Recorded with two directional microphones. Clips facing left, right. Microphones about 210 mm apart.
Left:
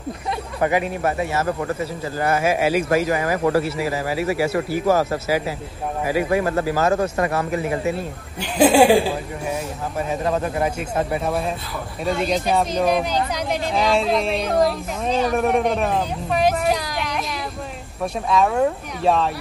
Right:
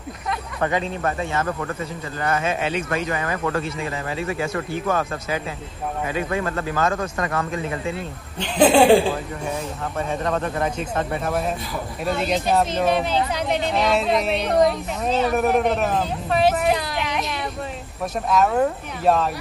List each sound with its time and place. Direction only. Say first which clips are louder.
0.7 s speech: left 3 dB; 10° left (ahead or behind)
1.4 s speech: left 3 dB; 25° left (ahead or behind)
2.4 s speech: left 5 dB; 10° left (ahead or behind)
3.1 s speech: left 5 dB; 25° left (ahead or behind)
4.8 s speech: left 6 dB; 30° left (ahead or behind)
8.4 s speech: left 1 dB; 10° left (ahead or behind)
10.3 s speech: left 2 dB; 10° left (ahead or behind)
12.0 s speech: left 2 dB; 5° right (ahead or behind)